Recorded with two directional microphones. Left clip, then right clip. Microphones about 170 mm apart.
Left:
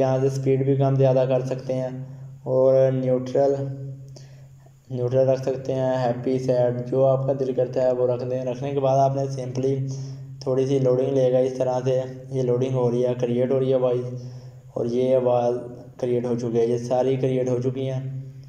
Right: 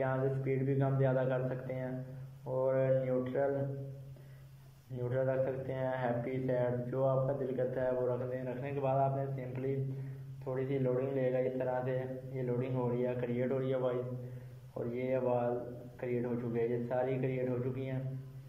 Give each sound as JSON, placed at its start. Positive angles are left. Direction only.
{"t": 0.0, "sound": "speech", "side_deg": 25}
{"t": 4.9, "sound": "speech", "side_deg": 25}